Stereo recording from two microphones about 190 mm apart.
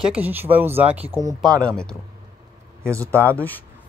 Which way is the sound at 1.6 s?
5° left (ahead or behind).